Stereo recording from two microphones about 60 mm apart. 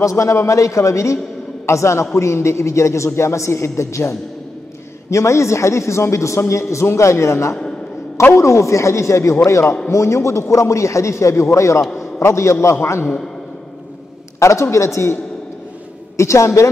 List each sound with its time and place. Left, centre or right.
0.0 s a man's voice: left
14.4 s a man's voice: left
16.2 s a man's voice: left